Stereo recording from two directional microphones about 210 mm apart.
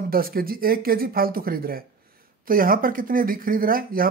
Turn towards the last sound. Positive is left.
turn(degrees=-45)  # may be behind; listen again after turning